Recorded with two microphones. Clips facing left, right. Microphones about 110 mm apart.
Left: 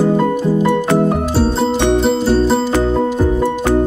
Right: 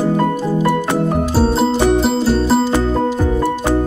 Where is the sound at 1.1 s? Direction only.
Centre (ahead or behind).